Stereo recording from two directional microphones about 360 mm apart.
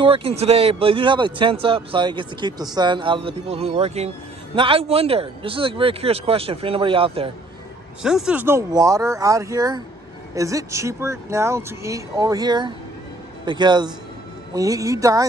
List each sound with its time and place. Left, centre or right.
0.0 s speech: centre
8.0 s speech: centre